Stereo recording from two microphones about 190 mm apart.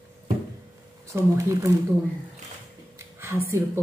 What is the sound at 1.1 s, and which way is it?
Speech, 15° right (ahead or behind).